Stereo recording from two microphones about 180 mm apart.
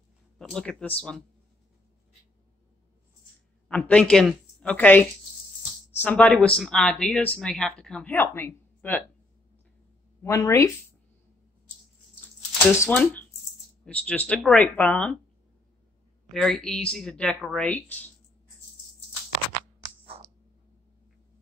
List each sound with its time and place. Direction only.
0.4 s a woman's voice: 5° left (ahead or behind)
3.6 s a woman's voice: 5° left (ahead or behind)
10.2 s speech: 15° left (ahead or behind)
12.7 s speech: 10° left (ahead or behind)
16.3 s a woman's voice: 5° left (ahead or behind)